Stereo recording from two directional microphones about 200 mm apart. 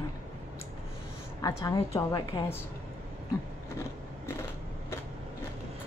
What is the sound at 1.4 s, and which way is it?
A woman's voice, 20° left (ahead or behind).